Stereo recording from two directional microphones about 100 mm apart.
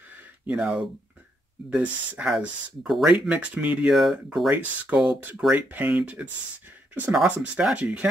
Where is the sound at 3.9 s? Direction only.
5° right (ahead or behind).